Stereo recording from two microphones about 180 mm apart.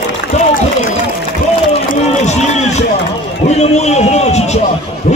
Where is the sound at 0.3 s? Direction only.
40° left (ahead or behind).